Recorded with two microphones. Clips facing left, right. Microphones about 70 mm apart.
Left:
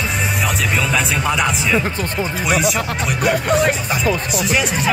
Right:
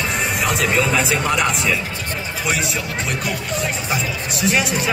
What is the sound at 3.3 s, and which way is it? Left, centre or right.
Music, left.